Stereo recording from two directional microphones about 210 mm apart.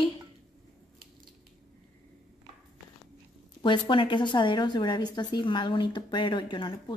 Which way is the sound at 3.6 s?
20° left (ahead or behind).